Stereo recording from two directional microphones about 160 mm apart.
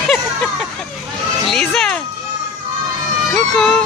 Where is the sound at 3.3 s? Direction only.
5° left (ahead or behind).